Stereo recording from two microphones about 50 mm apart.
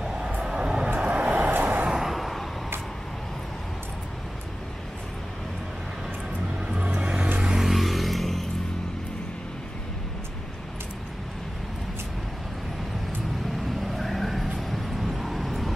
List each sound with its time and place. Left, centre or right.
0.4 s music: centre
0.9 s vehicle: right
1.9 s vehicle: centre
6.8 s vehicle: centre
13.7 s vehicle: centre